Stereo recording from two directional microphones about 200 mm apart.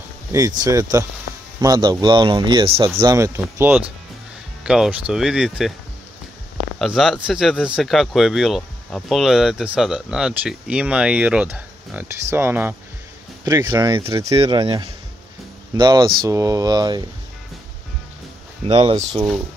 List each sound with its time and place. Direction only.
0.3 s speech: 20° right (ahead or behind); by 5.7 s centre (ahead or behind)
6.8 s speech: centre (ahead or behind); by 17.0 s 20° right (ahead or behind)
18.7 s speech: 30° right (ahead or behind)